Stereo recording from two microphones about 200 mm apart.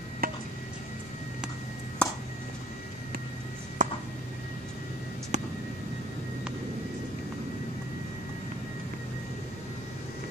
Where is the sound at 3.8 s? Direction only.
40° right (ahead or behind).